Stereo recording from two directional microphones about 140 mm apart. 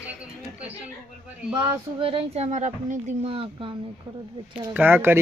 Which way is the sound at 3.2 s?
40° right (ahead or behind).